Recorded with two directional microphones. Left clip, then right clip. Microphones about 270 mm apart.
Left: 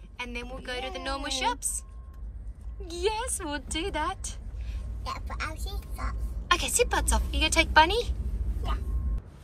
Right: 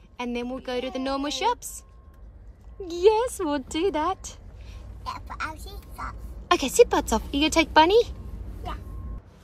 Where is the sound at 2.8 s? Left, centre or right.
Centre.